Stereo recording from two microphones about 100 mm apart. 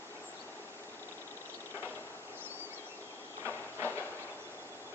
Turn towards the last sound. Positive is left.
turn(degrees=-25)  # may be behind; listen again after turning